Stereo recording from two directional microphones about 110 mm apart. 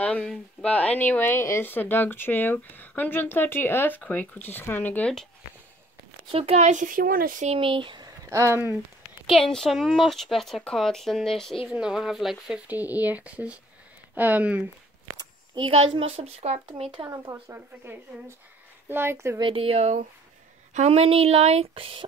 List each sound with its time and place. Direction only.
0.0 s a woman's voice: 10° left (ahead or behind)
6.3 s speech: 70° right (ahead or behind)
7.5 s speech: 50° right (ahead or behind)
8.3 s speech: 25° right (ahead or behind)
9.4 s speech: 5° left (ahead or behind)
11.6 s speech: 10° right (ahead or behind)
15.5 s a woman's voice: 50° right (ahead or behind); by 16.6 s 70° right (ahead or behind)
17.1 s speech: 30° right (ahead or behind)
19.4 s speech: 55° right (ahead or behind)